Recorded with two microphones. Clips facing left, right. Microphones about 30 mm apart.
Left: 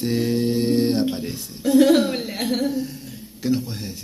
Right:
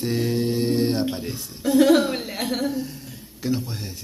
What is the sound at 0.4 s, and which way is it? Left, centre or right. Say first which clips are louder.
Mantra: left 2 dB; centre.